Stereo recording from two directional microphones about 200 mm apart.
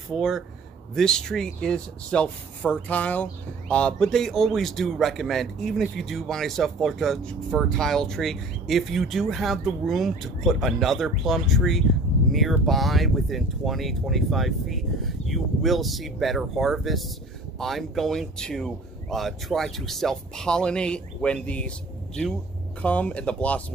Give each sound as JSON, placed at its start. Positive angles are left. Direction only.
{"t": 0.1, "sound": "speech", "side_deg": 0}